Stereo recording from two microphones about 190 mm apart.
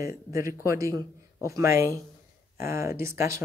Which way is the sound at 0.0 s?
15° right (ahead or behind).